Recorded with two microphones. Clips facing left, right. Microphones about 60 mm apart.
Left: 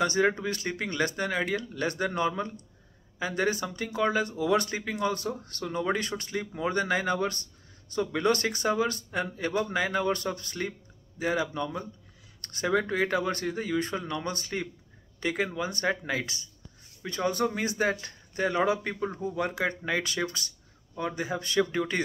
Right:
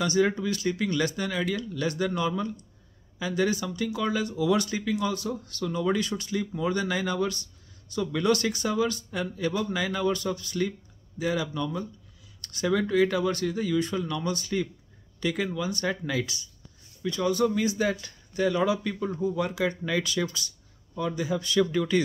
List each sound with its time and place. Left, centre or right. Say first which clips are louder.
0.0 s speech: right 1 dB; left
17.0 s speech: right 3 dB; left
20.2 s speech: even; left